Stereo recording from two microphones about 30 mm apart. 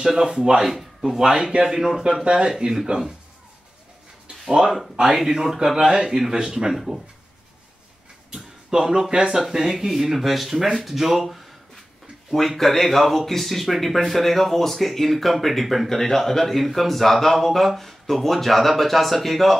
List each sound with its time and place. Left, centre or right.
0.0 s speech: centre
0.6 s speech: centre
1.1 s speech: centre
2.9 s speech: centre
4.5 s speech: centre
5.8 s speech: right
6.7 s speech: centre
8.6 s speech: centre
9.7 s speech: centre
12.3 s speech: centre